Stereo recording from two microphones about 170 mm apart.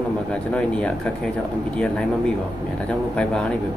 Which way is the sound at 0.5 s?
5° left (ahead or behind).